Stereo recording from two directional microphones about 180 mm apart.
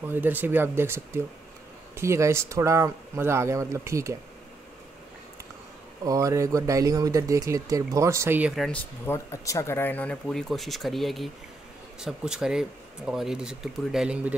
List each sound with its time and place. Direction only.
0.0 s speech: 10° right (ahead or behind)
6.0 s speech: 20° right (ahead or behind); by 8.7 s centre (ahead or behind)
9.0 s speech: 15° left (ahead or behind); by 14.3 s 5° right (ahead or behind)